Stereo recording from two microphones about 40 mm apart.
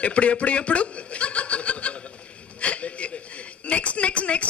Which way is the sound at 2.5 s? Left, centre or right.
Left.